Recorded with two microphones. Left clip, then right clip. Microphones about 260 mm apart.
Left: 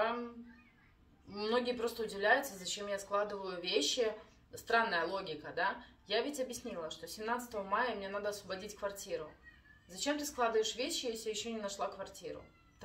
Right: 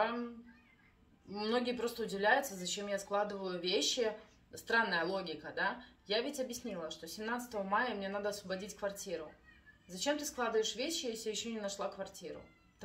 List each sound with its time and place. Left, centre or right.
1.3 s speech: centre